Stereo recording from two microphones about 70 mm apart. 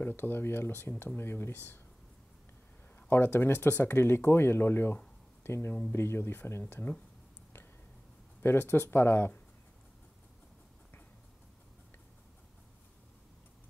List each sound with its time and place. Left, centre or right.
0.0 s speech: left
3.1 s speech: left
8.4 s speech: left